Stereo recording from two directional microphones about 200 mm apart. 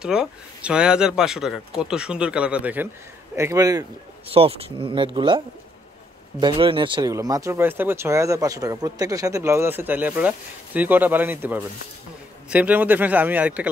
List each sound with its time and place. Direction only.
0.0 s speech: 5° right (ahead or behind)
4.3 s speech: 30° right (ahead or behind)
6.4 s speech: 25° right (ahead or behind); by 13.7 s 5° right (ahead or behind)